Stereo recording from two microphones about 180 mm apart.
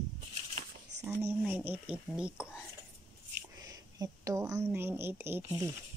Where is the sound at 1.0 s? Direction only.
10° right (ahead or behind).